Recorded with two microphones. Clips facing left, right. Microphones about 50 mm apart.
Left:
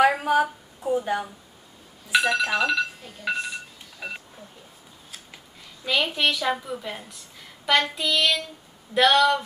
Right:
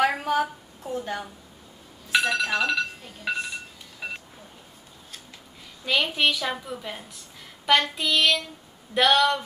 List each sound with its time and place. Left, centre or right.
0.0 s a sound: centre
2.0 s speech: centre
5.9 s a woman's voice: centre